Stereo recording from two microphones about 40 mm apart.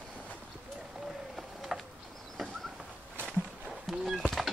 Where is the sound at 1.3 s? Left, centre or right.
Centre.